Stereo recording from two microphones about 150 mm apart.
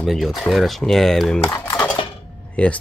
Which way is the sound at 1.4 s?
20° left (ahead or behind).